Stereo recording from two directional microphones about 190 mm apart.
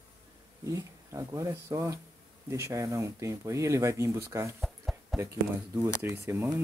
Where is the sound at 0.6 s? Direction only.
15° right (ahead or behind).